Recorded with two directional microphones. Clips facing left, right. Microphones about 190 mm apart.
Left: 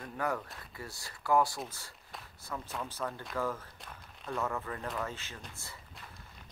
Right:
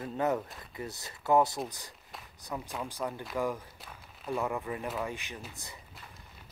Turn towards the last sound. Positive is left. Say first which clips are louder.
# right 4 dB
turn(degrees=-15)  # may be behind; listen again after turning